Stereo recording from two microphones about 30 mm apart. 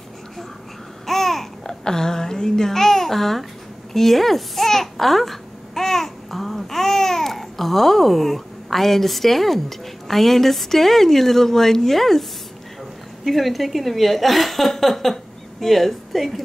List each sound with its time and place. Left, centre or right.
1.0 s babbling: centre
1.9 s a child's voice: centre